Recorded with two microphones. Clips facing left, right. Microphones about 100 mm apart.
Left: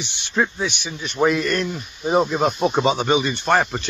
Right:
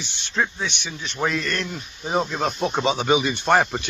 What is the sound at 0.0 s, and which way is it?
A man's voice, 15° left (ahead or behind).